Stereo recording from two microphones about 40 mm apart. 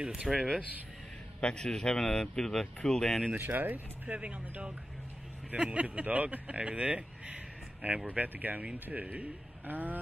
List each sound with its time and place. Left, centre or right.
0.3 s speech: centre
1.4 s speech: left
3.3 s speech: right
4.1 s speech: right
8.1 s speech: right
9.0 s speech: right
9.7 s speech: right